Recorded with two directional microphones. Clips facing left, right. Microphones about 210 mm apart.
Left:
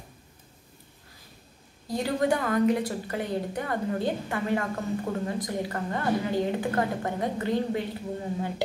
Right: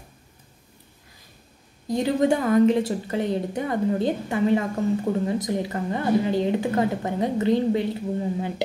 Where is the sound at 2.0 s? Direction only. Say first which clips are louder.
Right 5 dB; 25° right (ahead or behind).